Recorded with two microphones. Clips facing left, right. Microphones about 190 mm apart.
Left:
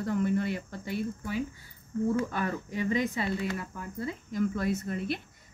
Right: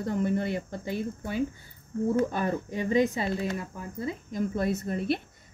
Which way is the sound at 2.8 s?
45° right (ahead or behind).